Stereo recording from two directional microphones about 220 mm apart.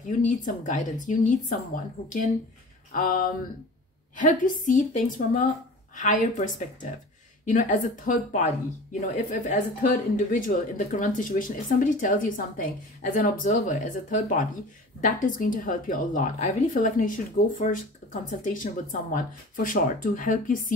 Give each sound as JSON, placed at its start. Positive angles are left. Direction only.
{"t": 0.2, "sound": "a woman's voice", "side_deg": 35}
{"t": 2.9, "sound": "a sound", "side_deg": 40}
{"t": 4.2, "sound": "a woman's voice", "side_deg": 35}